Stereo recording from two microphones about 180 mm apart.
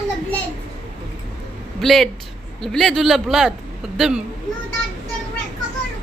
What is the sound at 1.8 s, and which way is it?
A man's voice, centre (ahead or behind).